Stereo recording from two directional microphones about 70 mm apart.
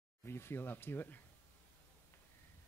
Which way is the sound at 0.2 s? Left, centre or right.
Left.